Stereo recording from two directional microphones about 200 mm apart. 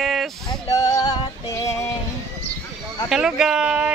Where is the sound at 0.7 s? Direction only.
15° left (ahead or behind).